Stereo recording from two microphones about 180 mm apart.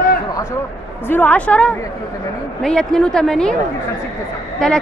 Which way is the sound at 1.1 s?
10° left (ahead or behind).